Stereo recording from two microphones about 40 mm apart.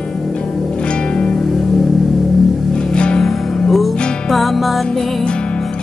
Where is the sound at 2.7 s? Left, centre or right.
Left.